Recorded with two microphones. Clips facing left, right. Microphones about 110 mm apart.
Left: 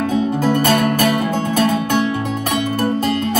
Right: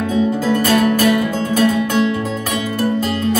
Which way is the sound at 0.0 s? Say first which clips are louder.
Even; 50° left (ahead or behind).